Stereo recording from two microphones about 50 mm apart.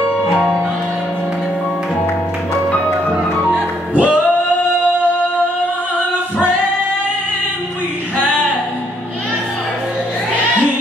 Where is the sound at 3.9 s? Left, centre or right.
Right.